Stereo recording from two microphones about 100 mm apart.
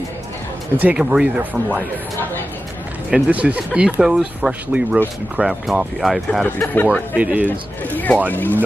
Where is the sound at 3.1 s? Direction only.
15° right (ahead or behind); by 6.4 s 5° left (ahead or behind).